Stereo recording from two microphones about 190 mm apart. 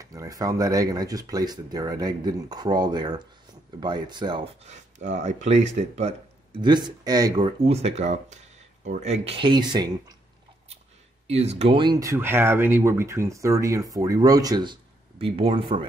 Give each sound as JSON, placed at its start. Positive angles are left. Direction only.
{"t": 0.0, "sound": "speech", "side_deg": -20}
{"t": 4.6, "sound": "speech", "side_deg": -40}
{"t": 6.6, "sound": "speech", "side_deg": -25}
{"t": 11.2, "sound": "speech", "side_deg": -35}